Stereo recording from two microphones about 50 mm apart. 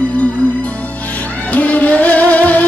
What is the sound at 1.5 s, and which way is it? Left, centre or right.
Music, left.